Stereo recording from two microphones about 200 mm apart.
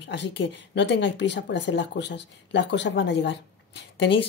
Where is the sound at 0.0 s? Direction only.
60° left (ahead or behind).